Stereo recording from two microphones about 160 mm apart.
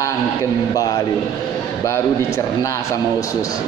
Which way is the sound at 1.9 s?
20° left (ahead or behind).